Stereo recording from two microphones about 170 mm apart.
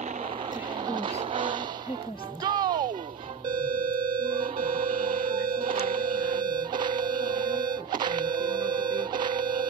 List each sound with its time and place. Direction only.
0.8 s music: 25° right (ahead or behind)
3.6 s telephone: 55° right (ahead or behind)
4.6 s music: 55° right (ahead or behind)
6.2 s music: 25° right (ahead or behind)